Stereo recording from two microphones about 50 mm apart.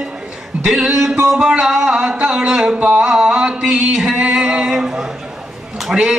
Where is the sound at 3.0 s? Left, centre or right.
Centre.